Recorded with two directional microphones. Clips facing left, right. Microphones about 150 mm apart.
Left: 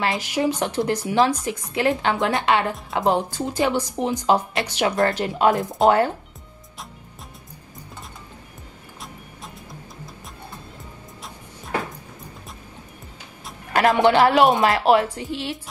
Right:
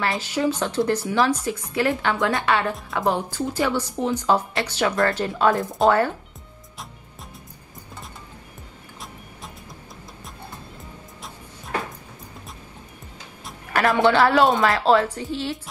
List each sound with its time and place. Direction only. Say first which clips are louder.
0.0 s speech: left 1 dB; 15° left (ahead or behind)
13.7 s speech: left 2 dB; 20° left (ahead or behind)